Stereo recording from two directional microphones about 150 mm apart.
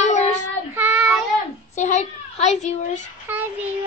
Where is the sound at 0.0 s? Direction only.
50° left (ahead or behind).